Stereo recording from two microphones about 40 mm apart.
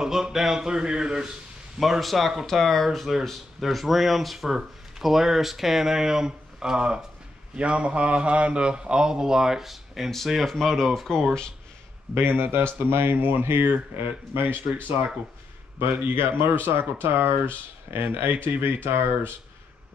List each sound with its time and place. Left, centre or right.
0.0 s a man's voice: centre
0.6 s a man's voice: centre
1.8 s a man's voice: centre
12.2 s speech: right
16.0 s speech: right
18.3 s speech: right
18.9 s speech: right